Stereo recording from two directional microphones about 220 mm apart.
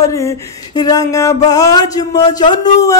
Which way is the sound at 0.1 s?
15° left (ahead or behind).